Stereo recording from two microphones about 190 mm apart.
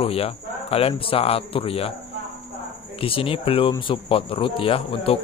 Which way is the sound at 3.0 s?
30° left (ahead or behind).